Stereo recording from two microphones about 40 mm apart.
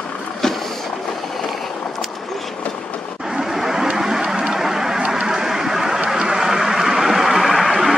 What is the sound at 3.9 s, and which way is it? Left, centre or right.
Vehicle, centre.